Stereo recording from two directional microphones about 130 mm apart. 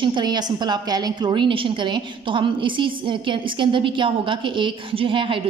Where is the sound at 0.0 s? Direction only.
35° right (ahead or behind).